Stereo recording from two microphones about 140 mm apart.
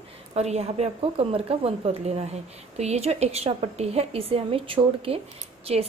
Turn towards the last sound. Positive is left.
turn(degrees=-45)  # may be behind; listen again after turning